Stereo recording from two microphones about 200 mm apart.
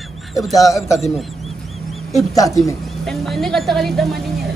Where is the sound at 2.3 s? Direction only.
15° left (ahead or behind).